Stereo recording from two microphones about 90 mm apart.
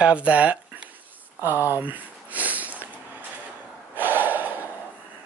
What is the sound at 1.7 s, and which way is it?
Sniff, 20° right (ahead or behind).